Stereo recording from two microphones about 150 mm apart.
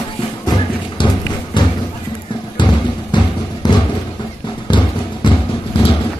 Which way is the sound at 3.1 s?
30° left (ahead or behind).